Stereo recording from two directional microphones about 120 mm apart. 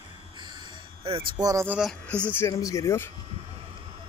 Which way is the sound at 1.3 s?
30° right (ahead or behind).